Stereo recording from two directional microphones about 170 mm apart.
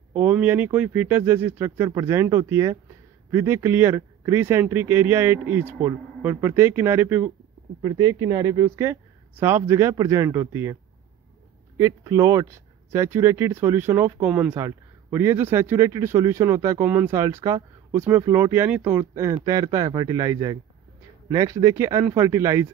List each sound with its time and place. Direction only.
0.1 s speech: 10° right (ahead or behind)